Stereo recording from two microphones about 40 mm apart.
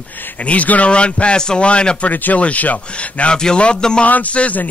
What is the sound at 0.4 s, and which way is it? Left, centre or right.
Speech, left.